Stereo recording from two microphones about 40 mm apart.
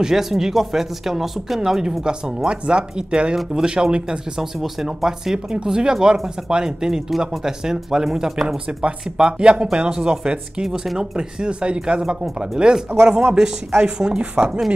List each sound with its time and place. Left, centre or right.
0.0 s speech: centre; by 4.2 s right
4.4 s speech: centre
12.7 s speech: centre